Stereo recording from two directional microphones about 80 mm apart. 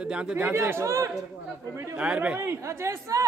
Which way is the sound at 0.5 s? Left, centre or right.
Right.